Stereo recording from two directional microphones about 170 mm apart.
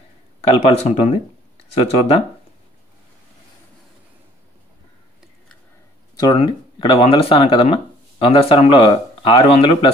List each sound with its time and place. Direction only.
0.4 s speech: 40° left (ahead or behind)
6.1 s speech: 25° left (ahead or behind)